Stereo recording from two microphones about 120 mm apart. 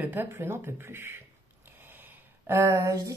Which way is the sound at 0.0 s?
15° right (ahead or behind).